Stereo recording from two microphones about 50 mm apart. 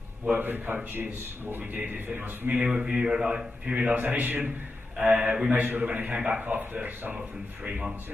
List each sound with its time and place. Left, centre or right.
0.4 s a man's voice: right
2.6 s speech: centre
4.0 s a man's voice: right
5.0 s speech: centre
5.8 s a man's voice: right
6.1 s speech: centre
6.4 s speech: right